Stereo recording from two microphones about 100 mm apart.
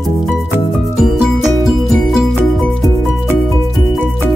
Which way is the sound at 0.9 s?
5° right (ahead or behind).